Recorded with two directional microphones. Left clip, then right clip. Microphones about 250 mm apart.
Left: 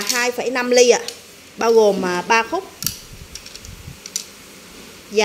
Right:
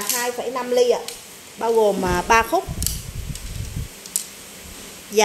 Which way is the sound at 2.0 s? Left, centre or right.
Centre.